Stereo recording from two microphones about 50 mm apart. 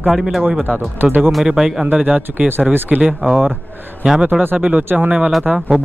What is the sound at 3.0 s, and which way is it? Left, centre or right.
A man's voice, centre.